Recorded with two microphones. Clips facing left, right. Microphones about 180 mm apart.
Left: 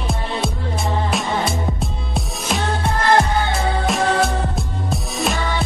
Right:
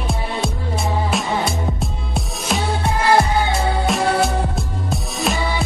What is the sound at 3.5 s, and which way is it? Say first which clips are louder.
Music: right 1 dB; centre (ahead or behind).